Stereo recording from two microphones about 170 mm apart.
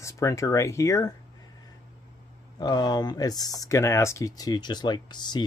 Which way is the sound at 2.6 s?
25° left (ahead or behind).